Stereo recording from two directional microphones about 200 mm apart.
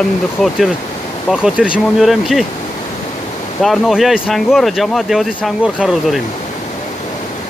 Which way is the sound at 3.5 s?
Centre (ahead or behind).